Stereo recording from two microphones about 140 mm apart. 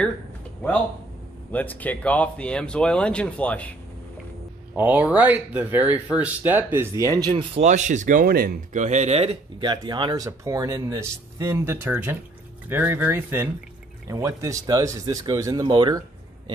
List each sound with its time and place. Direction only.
1.5 s speech: 10° left (ahead or behind)
4.7 s speech: 10° right (ahead or behind)
7.2 s speech: 45° right (ahead or behind)
9.6 s speech: 30° right (ahead or behind)